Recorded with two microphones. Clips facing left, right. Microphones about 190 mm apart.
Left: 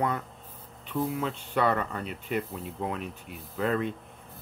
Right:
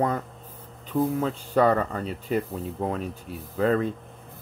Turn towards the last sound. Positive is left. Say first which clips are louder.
# right 5 dB
turn(degrees=-35)  # may be behind; listen again after turning